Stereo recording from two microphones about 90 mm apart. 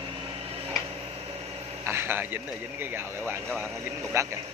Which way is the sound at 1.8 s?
25° right (ahead or behind).